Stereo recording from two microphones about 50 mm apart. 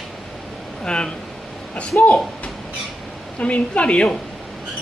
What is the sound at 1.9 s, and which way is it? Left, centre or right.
Speech, left.